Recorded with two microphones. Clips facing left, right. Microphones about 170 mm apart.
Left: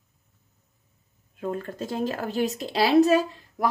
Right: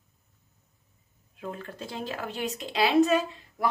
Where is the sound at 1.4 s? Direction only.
45° left (ahead or behind).